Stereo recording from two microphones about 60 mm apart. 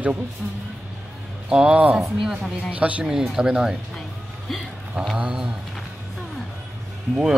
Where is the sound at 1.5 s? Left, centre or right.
Centre.